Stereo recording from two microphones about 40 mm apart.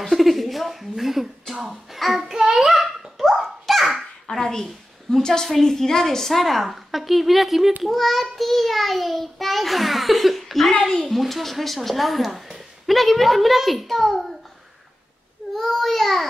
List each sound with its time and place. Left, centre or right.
0.0 s a sound: centre
2.2 s child singing: centre
2.7 s dog: centre
4.3 s a sound: centre
5.1 s a woman's voice: centre
10.7 s a woman's voice: centre
15.5 s child singing: centre